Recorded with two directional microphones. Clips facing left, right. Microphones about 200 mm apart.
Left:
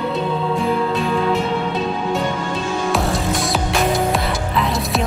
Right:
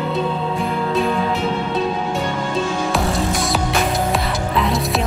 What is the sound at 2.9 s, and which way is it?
Music, centre (ahead or behind).